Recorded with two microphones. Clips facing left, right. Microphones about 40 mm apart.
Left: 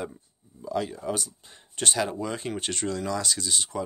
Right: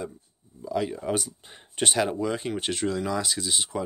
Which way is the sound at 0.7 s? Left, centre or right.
Centre.